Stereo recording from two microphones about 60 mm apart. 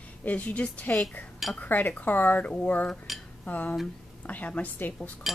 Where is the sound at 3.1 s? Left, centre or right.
Centre.